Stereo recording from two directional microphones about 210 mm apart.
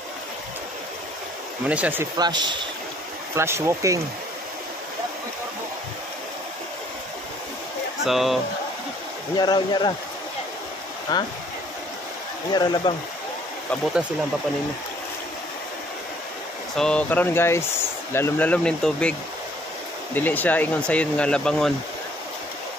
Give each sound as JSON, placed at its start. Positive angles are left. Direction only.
{"t": 1.7, "sound": "speech", "side_deg": -5}
{"t": 8.0, "sound": "speech", "side_deg": 0}
{"t": 9.4, "sound": "speech", "side_deg": 20}
{"t": 11.1, "sound": "speech", "side_deg": 20}
{"t": 12.5, "sound": "speech", "side_deg": 20}
{"t": 16.7, "sound": "speech", "side_deg": 5}
{"t": 20.2, "sound": "speech", "side_deg": 10}